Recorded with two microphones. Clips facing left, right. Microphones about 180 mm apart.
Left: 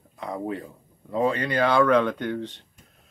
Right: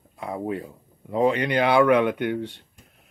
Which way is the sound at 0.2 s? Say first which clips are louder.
Right 1 dB; 10° right (ahead or behind).